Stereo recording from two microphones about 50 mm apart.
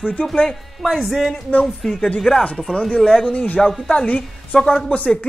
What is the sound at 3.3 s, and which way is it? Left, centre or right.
Speech, left.